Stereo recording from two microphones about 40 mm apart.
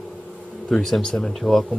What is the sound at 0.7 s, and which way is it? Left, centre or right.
Speech, centre.